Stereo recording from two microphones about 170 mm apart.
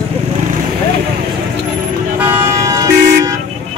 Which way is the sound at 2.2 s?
20° right (ahead or behind).